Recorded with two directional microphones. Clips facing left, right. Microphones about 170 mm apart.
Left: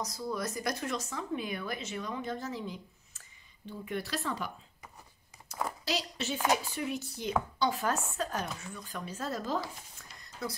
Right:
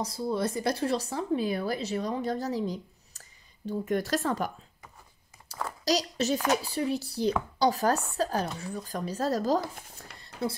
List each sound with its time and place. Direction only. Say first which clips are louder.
0.0 s speech: right 6 dB; 30° right (ahead or behind); by 4.5 s 45° right (ahead or behind)
5.9 s speech: right 11 dB; 40° right (ahead or behind)
10.1 s a sound: right 7 dB; 30° right (ahead or behind)